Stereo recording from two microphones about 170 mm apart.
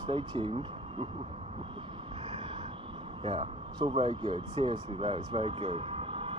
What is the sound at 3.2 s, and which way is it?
Speech, 30° right (ahead or behind).